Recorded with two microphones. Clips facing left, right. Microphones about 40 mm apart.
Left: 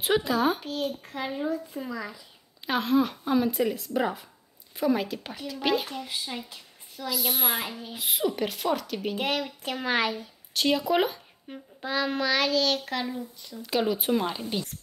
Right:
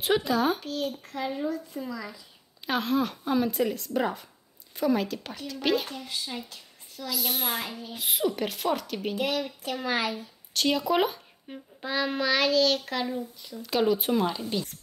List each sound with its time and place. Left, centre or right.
0.0 s speech: centre
2.6 s a child's voice: centre
9.1 s speech: left
10.5 s a child's voice: centre